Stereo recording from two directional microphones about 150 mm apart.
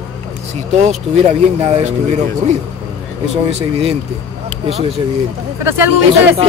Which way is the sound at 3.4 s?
40° right (ahead or behind).